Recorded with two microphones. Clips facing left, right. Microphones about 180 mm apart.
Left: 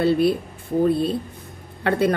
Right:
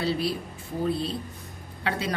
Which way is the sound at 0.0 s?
55° left (ahead or behind).